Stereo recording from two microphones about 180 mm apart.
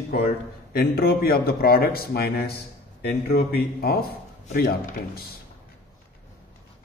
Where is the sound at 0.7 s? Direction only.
60° left (ahead or behind).